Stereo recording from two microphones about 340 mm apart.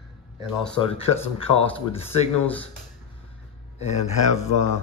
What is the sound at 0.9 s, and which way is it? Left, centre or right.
Speech, centre.